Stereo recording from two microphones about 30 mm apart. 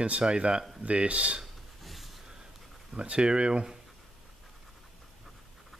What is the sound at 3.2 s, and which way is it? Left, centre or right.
Speech, right.